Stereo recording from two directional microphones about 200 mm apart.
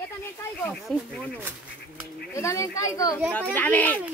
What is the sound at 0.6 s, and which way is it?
Speech, 5° left (ahead or behind).